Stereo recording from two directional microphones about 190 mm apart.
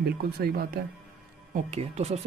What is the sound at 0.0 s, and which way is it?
Speech, 55° right (ahead or behind).